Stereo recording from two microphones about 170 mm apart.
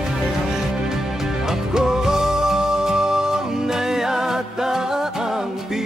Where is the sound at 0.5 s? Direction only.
5° right (ahead or behind).